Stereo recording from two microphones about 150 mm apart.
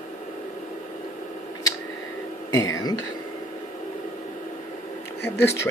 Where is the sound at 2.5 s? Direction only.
20° left (ahead or behind).